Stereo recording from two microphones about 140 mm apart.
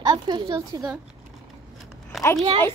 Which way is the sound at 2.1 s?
Centre (ahead or behind).